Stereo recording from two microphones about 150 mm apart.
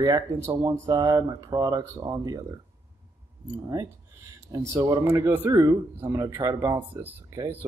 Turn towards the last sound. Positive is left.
turn(degrees=-20)  # may be behind; listen again after turning